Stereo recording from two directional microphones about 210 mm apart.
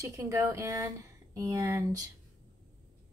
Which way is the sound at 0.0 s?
15° right (ahead or behind).